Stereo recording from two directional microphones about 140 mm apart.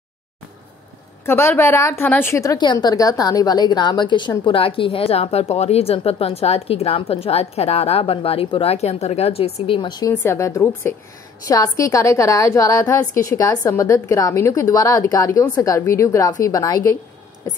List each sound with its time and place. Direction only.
1.2 s a woman's voice: 15° left (ahead or behind); by 10.1 s 30° left (ahead or behind)
10.2 s a woman's voice: 20° left (ahead or behind)